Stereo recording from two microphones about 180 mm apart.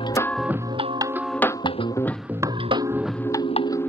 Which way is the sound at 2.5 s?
30° right (ahead or behind).